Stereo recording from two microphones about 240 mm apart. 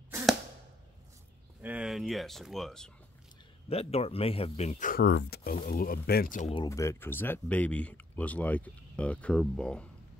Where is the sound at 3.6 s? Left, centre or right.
Left.